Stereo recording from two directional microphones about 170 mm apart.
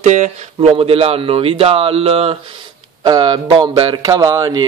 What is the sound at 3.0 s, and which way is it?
Speech, 25° right (ahead or behind).